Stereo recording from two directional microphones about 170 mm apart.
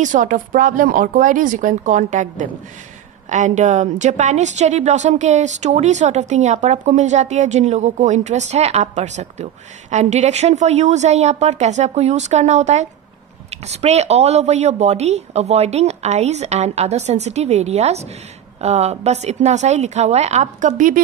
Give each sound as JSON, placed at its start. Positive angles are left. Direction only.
{"t": 0.0, "sound": "a woman's voice", "side_deg": -50}